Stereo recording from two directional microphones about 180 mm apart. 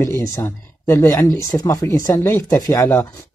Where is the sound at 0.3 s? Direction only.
15° left (ahead or behind).